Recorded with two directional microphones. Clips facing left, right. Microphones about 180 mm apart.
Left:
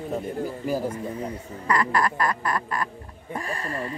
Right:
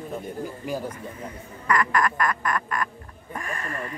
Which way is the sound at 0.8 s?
30° left (ahead or behind).